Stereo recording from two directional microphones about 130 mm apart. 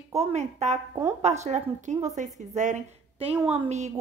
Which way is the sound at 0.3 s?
60° right (ahead or behind).